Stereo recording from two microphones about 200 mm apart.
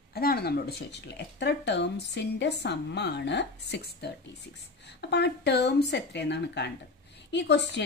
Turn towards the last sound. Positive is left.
turn(degrees=60)  # may be behind; listen again after turning